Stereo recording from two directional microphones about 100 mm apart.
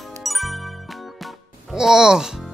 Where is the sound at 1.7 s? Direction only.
5° right (ahead or behind).